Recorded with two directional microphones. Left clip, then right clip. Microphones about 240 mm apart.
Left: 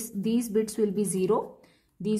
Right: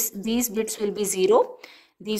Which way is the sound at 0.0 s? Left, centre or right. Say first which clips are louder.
Right 3 dB; right.